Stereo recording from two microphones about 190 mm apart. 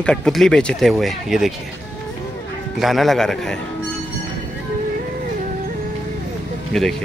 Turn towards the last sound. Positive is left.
turn(degrees=0)  # may be behind; listen again after turning